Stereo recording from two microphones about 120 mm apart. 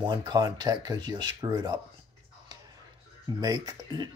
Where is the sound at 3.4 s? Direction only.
35° right (ahead or behind).